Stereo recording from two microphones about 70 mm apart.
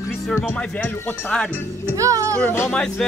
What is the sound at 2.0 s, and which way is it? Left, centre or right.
Speech, right.